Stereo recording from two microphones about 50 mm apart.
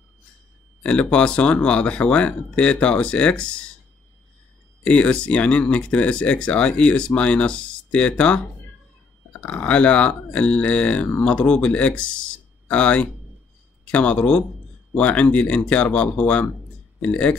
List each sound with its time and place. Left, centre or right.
0.8 s speech: left
4.8 s speech: left